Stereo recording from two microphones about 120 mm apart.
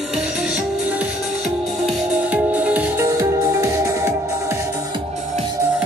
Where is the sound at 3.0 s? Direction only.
25° right (ahead or behind).